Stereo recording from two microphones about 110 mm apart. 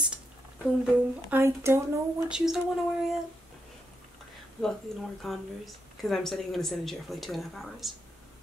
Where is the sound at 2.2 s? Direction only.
5° right (ahead or behind).